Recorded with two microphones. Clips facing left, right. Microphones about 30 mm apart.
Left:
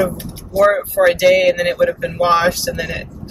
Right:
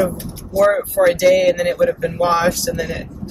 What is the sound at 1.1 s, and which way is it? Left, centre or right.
Speech, left.